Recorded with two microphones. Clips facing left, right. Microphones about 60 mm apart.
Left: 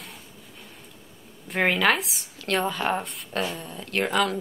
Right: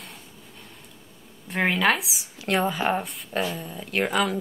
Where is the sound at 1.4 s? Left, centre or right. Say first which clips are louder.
Even; centre.